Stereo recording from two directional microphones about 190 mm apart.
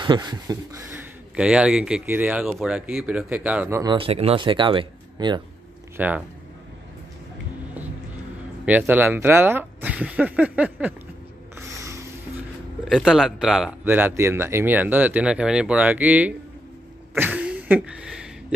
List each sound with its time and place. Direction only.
0.0 s speech: 20° right (ahead or behind)
0.9 s speech: 5° right (ahead or behind)
3.8 s speech: 25° right (ahead or behind)
5.9 s speech: 10° right (ahead or behind)
8.6 s speech: 10° right (ahead or behind)
11.5 s a sound: 15° right (ahead or behind)
12.8 s a man's voice: centre (ahead or behind)
17.1 s a sound: 10° right (ahead or behind)